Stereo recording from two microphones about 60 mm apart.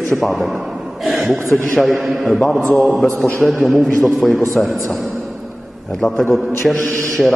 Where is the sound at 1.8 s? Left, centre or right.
Centre.